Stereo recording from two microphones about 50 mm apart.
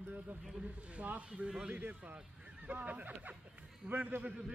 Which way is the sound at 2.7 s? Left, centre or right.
Right.